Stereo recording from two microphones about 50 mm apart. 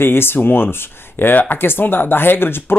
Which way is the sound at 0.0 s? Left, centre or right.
Left.